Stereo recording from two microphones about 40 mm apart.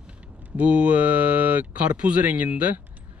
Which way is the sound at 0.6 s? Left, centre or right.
Right.